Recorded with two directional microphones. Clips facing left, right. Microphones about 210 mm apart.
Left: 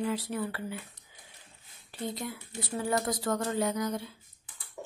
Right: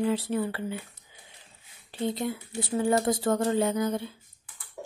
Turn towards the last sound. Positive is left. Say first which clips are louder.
# right 4 dB
turn(degrees=-25)  # may be behind; listen again after turning